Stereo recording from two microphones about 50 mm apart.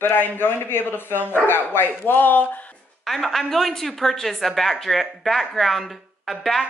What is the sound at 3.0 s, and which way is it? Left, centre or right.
Speech, centre.